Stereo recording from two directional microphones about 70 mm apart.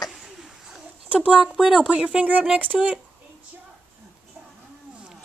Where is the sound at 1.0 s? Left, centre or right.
Centre.